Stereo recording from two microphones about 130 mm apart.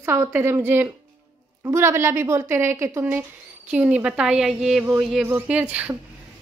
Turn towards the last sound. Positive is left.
turn(degrees=-10)  # may be behind; listen again after turning